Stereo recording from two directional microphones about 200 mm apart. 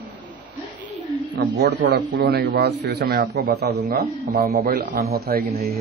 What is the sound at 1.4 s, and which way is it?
Speech, 60° right (ahead or behind).